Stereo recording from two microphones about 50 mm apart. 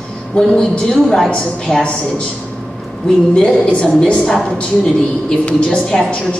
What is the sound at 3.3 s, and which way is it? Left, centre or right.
Speech, centre.